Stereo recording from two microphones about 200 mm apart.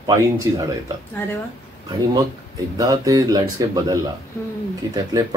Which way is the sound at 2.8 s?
15° right (ahead or behind).